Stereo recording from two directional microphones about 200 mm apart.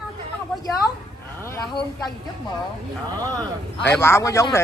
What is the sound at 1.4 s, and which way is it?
Speech, 15° left (ahead or behind).